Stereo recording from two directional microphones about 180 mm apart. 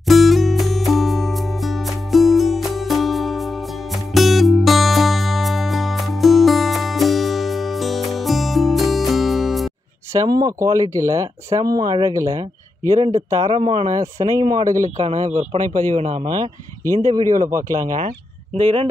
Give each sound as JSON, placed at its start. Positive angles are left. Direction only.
{"t": 0.0, "sound": "music", "side_deg": 0}
{"t": 10.2, "sound": "speech", "side_deg": -20}
{"t": 13.1, "sound": "speech", "side_deg": -30}
{"t": 15.0, "sound": "speech", "side_deg": -35}
{"t": 17.1, "sound": "speech", "side_deg": -20}
{"t": 18.6, "sound": "speech", "side_deg": -30}